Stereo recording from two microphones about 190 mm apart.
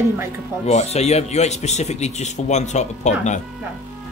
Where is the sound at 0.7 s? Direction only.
35° left (ahead or behind).